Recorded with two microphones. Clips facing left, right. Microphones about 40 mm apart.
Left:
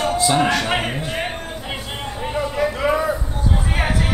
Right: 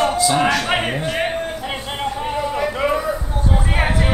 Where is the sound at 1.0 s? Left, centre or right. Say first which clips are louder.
Right 4 dB; right.